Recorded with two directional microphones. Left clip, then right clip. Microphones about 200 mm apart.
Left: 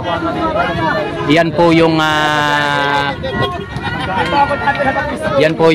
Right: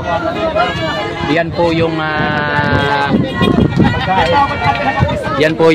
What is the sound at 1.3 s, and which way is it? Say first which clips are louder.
Speech: left 4 dB; 25° left (ahead or behind).